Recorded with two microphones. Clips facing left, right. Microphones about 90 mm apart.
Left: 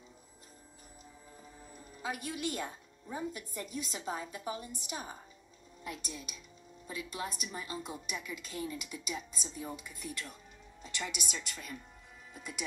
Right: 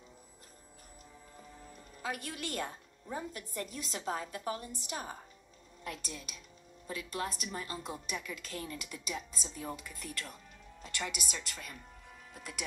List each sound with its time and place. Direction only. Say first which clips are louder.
2.0 s a woman's voice: left 1 dB; 10° left (ahead or behind)
10.8 s speech: right 1 dB; 50° right (ahead or behind)
11.1 s a woman's voice: even; 5° right (ahead or behind)